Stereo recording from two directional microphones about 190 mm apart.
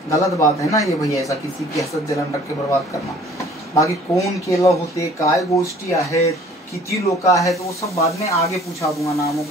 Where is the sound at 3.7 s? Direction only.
15° left (ahead or behind).